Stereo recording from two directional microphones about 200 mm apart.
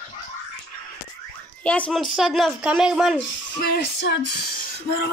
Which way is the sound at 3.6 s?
55° left (ahead or behind).